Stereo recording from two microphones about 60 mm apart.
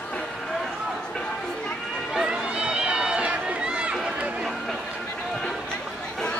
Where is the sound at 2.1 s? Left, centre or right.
Centre.